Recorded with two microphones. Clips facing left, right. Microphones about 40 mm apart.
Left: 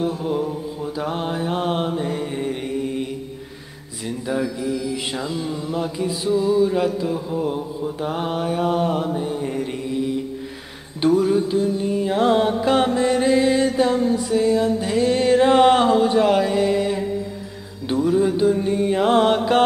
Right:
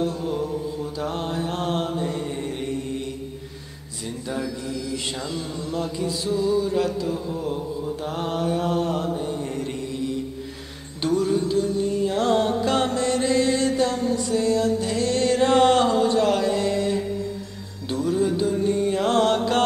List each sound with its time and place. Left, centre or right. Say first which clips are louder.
0.0 s mantra: left 3 dB; centre